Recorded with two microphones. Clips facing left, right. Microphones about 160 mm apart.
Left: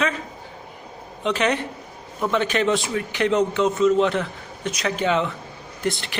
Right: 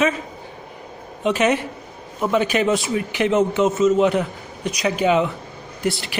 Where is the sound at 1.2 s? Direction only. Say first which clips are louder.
Right 3 dB; 15° right (ahead or behind).